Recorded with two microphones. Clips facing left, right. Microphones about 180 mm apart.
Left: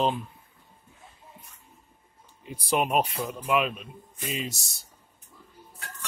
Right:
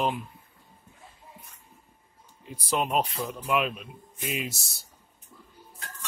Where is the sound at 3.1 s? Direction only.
Centre (ahead or behind).